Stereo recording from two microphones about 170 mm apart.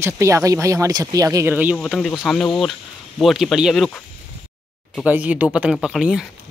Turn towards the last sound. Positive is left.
turn(degrees=0)  # may be behind; listen again after turning